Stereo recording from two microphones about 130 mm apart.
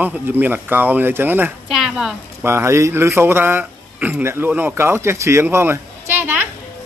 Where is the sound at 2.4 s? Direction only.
20° right (ahead or behind).